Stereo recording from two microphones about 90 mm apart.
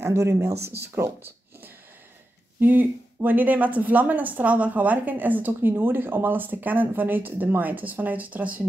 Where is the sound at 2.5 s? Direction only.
20° right (ahead or behind).